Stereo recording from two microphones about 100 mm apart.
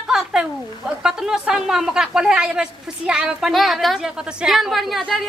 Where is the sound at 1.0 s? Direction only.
5° right (ahead or behind).